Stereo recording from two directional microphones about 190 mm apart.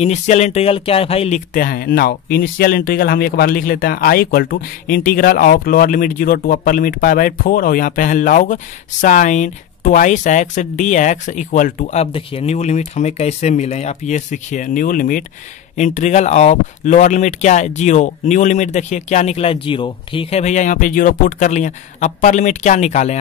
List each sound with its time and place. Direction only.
0.0 s speech: 35° left (ahead or behind)
1.5 s speech: 50° left (ahead or behind)